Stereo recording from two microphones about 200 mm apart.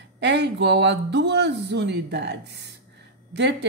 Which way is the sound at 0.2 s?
60° right (ahead or behind).